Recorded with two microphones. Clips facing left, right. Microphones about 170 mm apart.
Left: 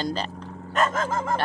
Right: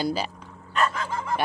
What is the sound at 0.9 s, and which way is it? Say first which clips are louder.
Dog: left 4 dB; 45° left (ahead or behind).